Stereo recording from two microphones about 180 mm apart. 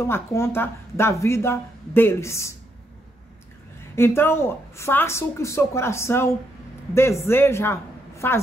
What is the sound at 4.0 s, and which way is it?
Speech, 10° left (ahead or behind).